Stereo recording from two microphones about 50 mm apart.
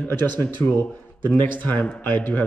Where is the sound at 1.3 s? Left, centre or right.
Left.